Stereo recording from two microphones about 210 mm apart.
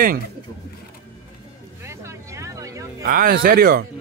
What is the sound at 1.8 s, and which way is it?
Vehicle, 15° right (ahead or behind).